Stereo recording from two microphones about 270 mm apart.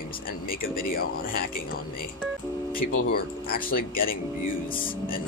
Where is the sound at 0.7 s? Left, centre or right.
Left.